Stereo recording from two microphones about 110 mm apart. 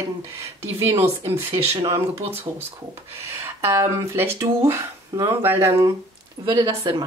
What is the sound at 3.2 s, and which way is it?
Speech, 25° right (ahead or behind).